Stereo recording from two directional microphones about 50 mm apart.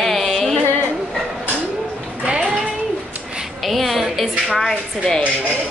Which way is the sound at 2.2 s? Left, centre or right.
Right.